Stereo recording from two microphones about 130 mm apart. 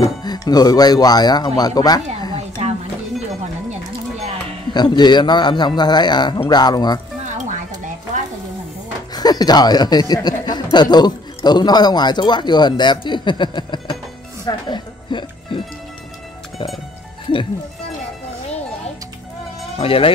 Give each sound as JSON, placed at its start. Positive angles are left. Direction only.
{"t": 0.0, "sound": "speech", "side_deg": 30}
{"t": 2.6, "sound": "a sound", "side_deg": -55}
{"t": 4.7, "sound": "speech", "side_deg": 35}
{"t": 9.1, "sound": "speech", "side_deg": 30}
{"t": 14.4, "sound": "music", "side_deg": 35}
{"t": 19.8, "sound": "speech", "side_deg": 45}